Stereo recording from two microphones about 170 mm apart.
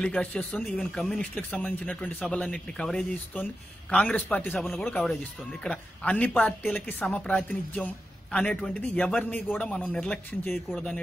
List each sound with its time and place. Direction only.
0.0 s a woman's voice: 5° left (ahead or behind)